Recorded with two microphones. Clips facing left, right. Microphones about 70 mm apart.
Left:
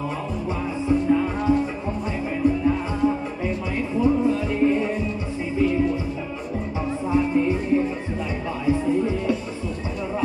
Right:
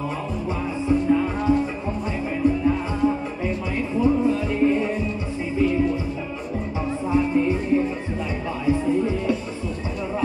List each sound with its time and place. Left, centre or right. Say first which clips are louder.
0.5 s music: even; centre